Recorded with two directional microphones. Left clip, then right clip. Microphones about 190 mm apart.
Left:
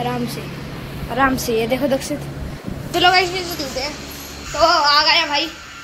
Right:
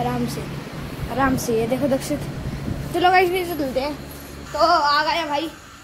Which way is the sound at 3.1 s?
35° right (ahead or behind).